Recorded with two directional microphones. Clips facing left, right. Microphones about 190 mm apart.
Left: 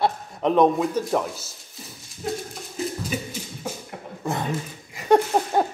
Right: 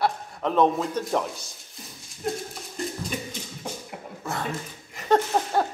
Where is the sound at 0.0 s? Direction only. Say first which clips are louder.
Left 3 dB; 20° left (ahead or behind).